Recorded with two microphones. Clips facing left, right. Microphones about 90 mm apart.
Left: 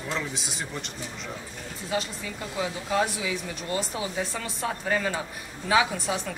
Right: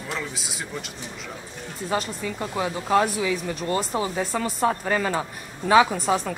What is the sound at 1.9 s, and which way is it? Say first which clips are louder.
A woman's voice: right 4 dB; 40° right (ahead or behind).